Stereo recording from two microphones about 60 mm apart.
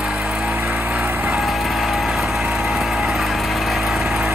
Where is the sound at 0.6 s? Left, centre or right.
Right.